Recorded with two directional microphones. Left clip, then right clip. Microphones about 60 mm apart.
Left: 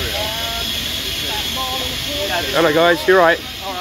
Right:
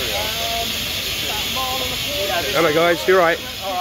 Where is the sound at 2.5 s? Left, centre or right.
Right.